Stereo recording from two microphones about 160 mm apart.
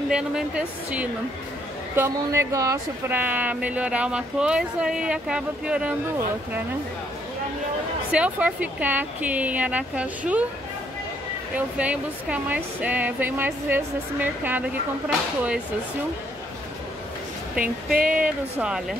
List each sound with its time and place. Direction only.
0.1 s a woman's voice: 5° right (ahead or behind)
2.0 s speech: 15° right (ahead or behind)
8.1 s speech: 5° right (ahead or behind)
11.5 s a woman's voice: 10° right (ahead or behind)
17.9 s a sound: 60° right (ahead or behind)
18.2 s a woman's voice: 5° right (ahead or behind)